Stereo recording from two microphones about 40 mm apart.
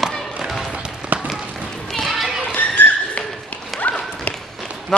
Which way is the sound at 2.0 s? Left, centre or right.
Centre.